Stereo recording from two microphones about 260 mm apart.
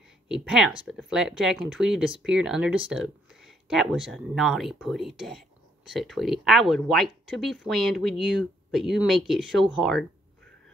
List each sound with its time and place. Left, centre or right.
0.3 s speech: centre